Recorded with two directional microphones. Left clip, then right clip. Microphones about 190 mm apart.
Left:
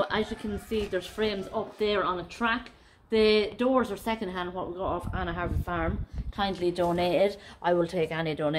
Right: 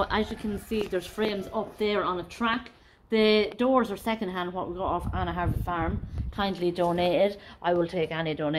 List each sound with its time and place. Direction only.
0.0 s speech: 35° right (ahead or behind); by 5.9 s 50° right (ahead or behind)
6.3 s a woman's voice: 20° right (ahead or behind); by 8.5 s centre (ahead or behind)